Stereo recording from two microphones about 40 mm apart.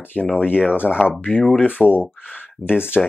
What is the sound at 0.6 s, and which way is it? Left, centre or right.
Speech, left.